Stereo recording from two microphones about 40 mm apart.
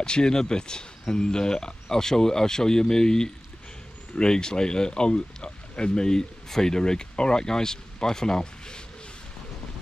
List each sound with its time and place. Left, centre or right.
0.0 s speech: left